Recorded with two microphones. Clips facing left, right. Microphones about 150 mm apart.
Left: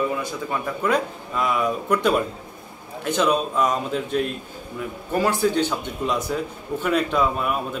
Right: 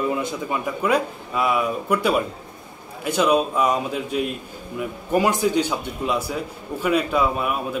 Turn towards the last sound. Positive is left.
turn(degrees=-5)  # may be behind; listen again after turning